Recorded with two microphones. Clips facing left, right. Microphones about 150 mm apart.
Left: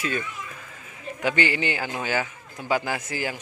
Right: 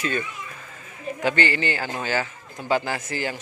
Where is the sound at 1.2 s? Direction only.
10° left (ahead or behind).